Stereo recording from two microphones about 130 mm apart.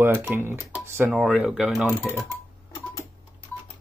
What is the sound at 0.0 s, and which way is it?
Speech, 20° right (ahead or behind).